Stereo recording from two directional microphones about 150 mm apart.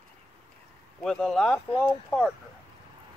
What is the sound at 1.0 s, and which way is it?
Speech, 5° left (ahead or behind).